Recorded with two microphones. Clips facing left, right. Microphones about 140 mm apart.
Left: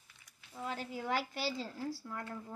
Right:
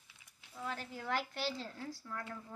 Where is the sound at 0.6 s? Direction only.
15° left (ahead or behind).